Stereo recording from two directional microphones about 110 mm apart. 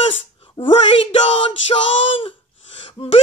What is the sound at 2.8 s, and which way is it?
Speech, 55° left (ahead or behind).